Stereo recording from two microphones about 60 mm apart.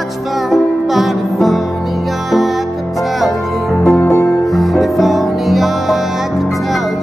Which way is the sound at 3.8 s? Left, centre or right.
Left.